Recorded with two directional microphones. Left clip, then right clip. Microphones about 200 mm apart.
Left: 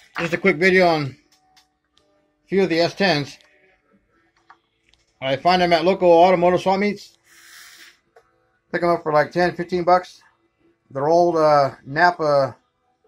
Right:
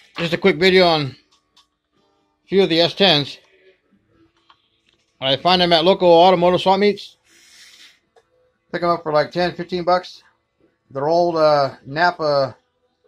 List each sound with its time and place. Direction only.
0.2 s a man's voice: 25° right (ahead or behind)
2.4 s a man's voice: 20° right (ahead or behind)
5.2 s a man's voice: 20° right (ahead or behind)
8.6 s speech: centre (ahead or behind)